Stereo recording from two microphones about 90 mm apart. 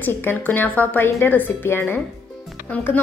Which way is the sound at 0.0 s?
20° left (ahead or behind).